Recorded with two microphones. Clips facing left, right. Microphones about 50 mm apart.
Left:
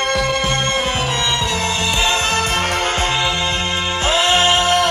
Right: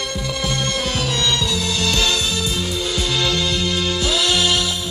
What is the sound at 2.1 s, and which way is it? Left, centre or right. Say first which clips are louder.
Music: left 5 dB; left.